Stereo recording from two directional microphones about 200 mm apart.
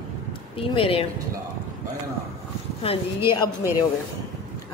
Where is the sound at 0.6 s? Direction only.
25° left (ahead or behind).